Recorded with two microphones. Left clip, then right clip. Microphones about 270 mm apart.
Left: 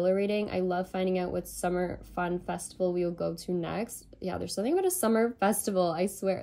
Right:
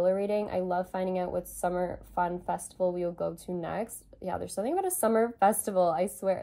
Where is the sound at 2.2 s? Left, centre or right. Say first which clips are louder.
Right 1 dB; right.